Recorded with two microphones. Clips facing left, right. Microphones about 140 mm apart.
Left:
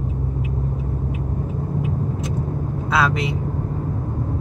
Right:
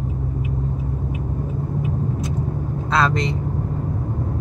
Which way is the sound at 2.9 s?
10° left (ahead or behind).